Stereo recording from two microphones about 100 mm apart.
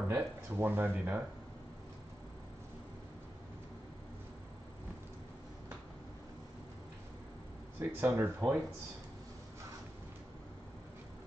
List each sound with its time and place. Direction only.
0.1 s speech: 20° right (ahead or behind)
7.8 s speech: 25° right (ahead or behind)